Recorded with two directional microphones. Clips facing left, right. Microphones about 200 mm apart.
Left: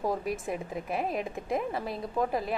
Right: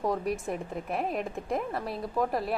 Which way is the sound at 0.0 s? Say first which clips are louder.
Right 1 dB; centre (ahead or behind).